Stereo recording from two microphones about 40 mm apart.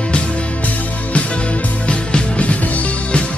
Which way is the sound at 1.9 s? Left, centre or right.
Left.